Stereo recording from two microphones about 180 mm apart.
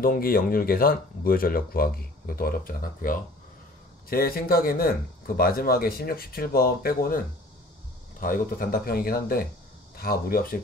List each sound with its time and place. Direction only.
0.0 s speech: 55° left (ahead or behind)
8.2 s speech: 50° left (ahead or behind)